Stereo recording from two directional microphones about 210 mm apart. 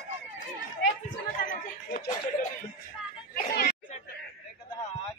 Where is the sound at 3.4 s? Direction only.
45° left (ahead or behind).